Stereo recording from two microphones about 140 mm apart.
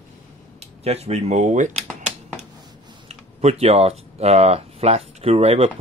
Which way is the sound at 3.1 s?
50° right (ahead or behind).